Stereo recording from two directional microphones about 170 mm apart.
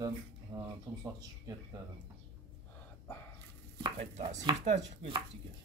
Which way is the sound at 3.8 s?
40° right (ahead or behind).